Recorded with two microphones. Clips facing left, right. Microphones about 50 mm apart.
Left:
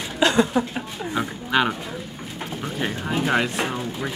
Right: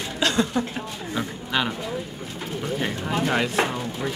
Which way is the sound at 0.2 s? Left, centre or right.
Centre.